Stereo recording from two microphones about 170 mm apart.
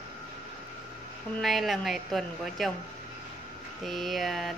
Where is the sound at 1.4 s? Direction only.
Centre (ahead or behind).